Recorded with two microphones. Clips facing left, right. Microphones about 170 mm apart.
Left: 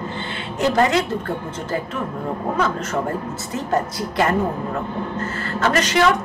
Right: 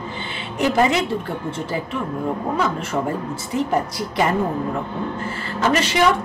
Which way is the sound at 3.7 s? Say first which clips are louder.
Even; 10° right (ahead or behind).